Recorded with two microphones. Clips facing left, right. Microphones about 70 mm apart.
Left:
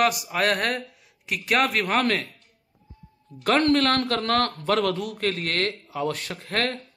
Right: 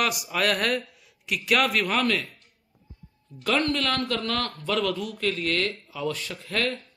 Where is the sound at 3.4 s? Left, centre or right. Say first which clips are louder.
Left 5 dB; left.